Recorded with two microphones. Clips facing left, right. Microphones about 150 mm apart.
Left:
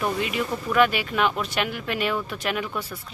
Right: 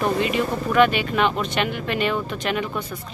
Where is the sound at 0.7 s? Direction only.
5° left (ahead or behind).